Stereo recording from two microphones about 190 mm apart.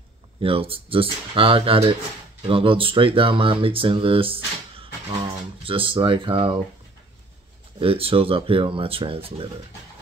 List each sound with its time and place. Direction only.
0.4 s speech: 30° right (ahead or behind)
5.6 s speech: 30° right (ahead or behind)
7.8 s speech: 30° right (ahead or behind)